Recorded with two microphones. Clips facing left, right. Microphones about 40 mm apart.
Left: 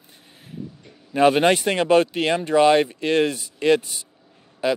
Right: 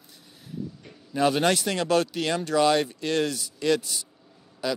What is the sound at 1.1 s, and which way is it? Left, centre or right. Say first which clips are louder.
Speech: left 6 dB; left.